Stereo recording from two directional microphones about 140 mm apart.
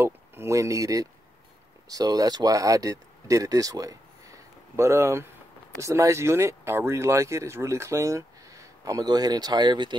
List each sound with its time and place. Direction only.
0.0 s speech: 20° right (ahead or behind)